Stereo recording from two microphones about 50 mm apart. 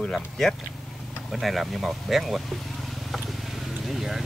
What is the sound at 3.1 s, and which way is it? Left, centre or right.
Vehicle, centre.